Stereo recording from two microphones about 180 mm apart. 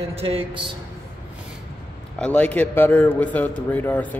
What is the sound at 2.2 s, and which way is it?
A man's voice, 10° left (ahead or behind).